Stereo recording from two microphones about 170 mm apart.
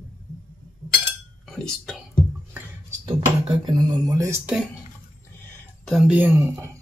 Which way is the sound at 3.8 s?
20° right (ahead or behind).